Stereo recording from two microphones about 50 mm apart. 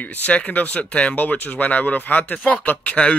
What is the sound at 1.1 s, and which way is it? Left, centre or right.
Speech, left.